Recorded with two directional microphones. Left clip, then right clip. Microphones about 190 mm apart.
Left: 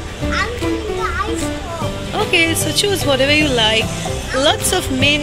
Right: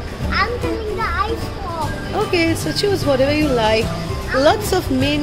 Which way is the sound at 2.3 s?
10° right (ahead or behind).